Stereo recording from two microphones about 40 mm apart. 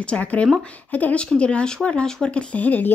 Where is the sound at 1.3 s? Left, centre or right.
Left.